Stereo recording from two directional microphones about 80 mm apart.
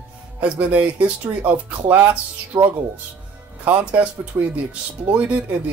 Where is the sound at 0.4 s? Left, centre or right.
Centre.